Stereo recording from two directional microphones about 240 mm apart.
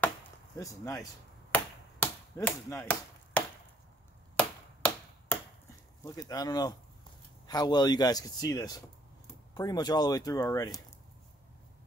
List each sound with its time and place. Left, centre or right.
0.6 s a man's voice: centre
1.5 s chop: centre
4.4 s a sound: centre
6.0 s a man's voice: centre